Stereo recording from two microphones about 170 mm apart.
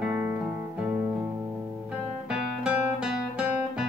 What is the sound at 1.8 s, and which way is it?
Music, 5° right (ahead or behind).